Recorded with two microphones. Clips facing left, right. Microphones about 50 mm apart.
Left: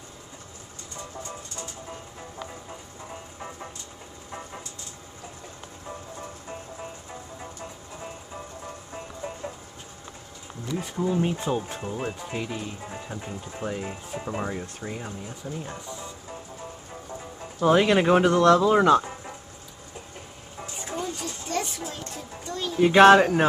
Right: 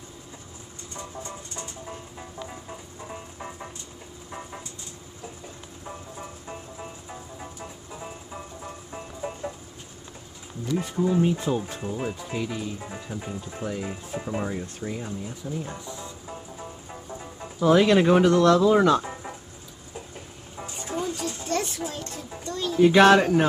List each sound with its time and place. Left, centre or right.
3.3 s music: centre
5.9 s music: centre
8.6 s music: centre
10.7 s speech: centre
17.6 s speech: centre
20.5 s vehicle: centre
20.9 s a sound: centre